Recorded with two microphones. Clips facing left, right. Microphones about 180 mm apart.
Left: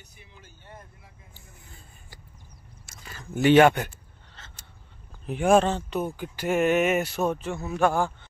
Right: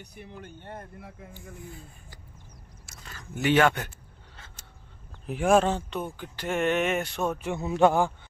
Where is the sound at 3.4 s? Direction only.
25° left (ahead or behind).